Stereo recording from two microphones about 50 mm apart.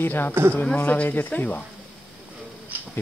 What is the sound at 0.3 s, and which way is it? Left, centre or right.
Speech, right.